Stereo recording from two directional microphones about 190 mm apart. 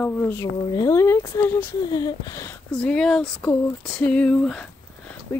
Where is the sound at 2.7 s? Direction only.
5° left (ahead or behind).